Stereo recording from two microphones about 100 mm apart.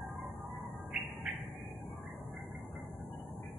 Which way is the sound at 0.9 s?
10° right (ahead or behind).